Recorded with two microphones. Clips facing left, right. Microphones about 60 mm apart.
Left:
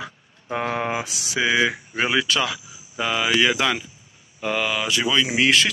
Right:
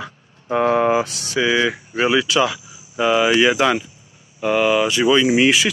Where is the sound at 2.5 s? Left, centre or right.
Centre.